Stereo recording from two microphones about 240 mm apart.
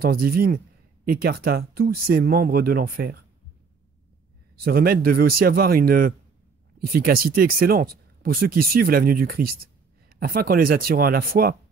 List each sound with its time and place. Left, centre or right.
0.0 s speech: right
4.6 s speech: right